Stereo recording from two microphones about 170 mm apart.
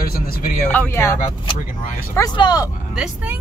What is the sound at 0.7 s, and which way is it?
Speech, 10° left (ahead or behind).